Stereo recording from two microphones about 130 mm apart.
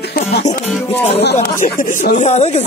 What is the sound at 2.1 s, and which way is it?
Speech, 60° left (ahead or behind).